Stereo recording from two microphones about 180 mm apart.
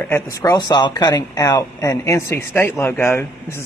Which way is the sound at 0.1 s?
20° left (ahead or behind).